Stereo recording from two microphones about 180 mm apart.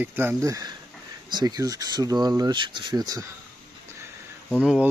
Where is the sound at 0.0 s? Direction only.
10° right (ahead or behind).